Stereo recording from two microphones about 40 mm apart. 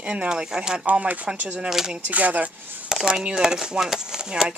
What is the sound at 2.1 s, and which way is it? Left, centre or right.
Speech, right.